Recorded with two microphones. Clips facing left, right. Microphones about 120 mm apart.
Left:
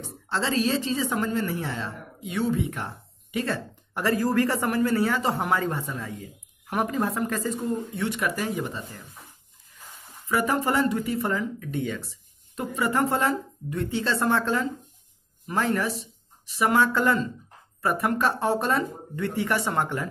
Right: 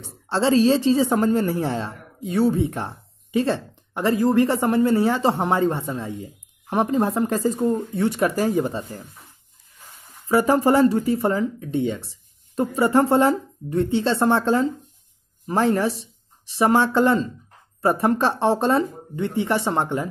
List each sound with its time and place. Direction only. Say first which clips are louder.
0.0 s speech: right 7 dB; 30° right (ahead or behind)
10.2 s speech: right 7 dB; 30° right (ahead or behind)